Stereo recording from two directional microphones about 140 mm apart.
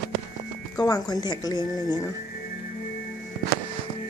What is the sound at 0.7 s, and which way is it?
Speech, 25° left (ahead or behind).